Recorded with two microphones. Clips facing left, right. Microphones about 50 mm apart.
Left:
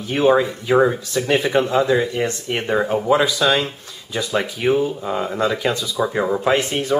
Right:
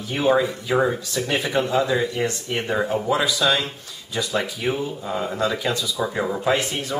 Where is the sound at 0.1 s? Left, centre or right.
Centre.